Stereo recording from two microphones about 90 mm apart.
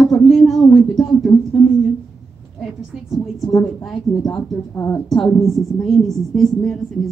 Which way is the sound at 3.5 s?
Centre (ahead or behind).